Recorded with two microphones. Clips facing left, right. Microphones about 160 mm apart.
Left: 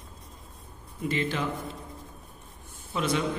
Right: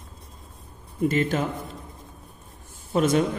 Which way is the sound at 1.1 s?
45° right (ahead or behind).